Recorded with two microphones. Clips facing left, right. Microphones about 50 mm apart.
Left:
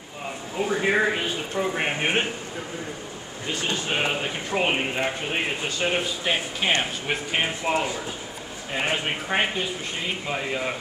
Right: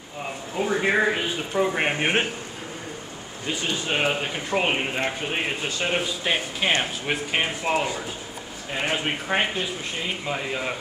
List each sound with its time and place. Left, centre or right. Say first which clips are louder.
0.6 s speech: even; centre
3.9 s speech: right 3 dB; centre